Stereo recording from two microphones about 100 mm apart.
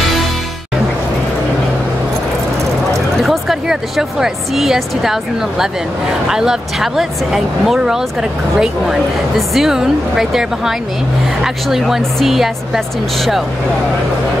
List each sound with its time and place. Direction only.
3.2 s speech: 5° right (ahead or behind)